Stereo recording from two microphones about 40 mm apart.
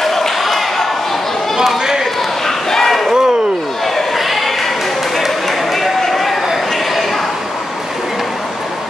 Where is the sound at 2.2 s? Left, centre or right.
Centre.